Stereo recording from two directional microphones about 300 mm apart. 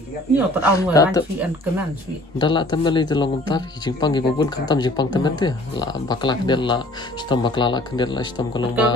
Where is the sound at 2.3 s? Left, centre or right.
Centre.